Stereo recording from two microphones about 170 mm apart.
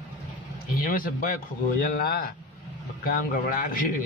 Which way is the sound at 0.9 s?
55° left (ahead or behind).